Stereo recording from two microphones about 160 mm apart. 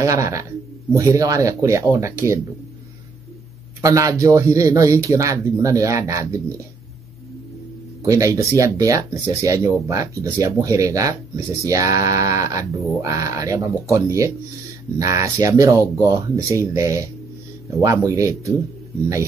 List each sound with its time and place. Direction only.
0.0 s speech: 20° right (ahead or behind)
3.8 s speech: 20° right (ahead or behind)
8.0 s speech: 20° right (ahead or behind)